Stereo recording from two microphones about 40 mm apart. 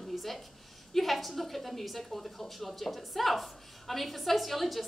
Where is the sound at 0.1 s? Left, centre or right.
Centre.